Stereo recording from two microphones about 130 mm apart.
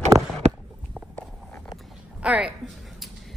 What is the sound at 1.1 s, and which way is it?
Walk, 15° left (ahead or behind).